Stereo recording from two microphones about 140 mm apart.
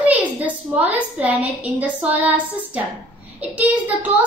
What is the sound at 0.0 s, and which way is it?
A woman's voice, 10° right (ahead or behind).